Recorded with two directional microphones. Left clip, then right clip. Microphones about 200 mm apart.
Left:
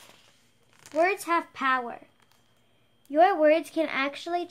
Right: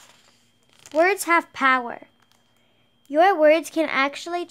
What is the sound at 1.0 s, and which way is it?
Speech, 45° right (ahead or behind).